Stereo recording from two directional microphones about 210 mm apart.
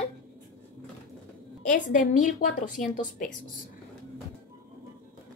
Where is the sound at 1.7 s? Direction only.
40° left (ahead or behind).